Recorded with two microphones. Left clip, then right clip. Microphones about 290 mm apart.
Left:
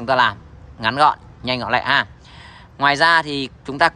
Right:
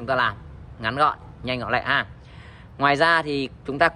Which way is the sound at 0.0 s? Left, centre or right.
Centre.